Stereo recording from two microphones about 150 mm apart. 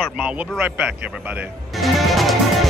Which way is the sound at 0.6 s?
10° right (ahead or behind).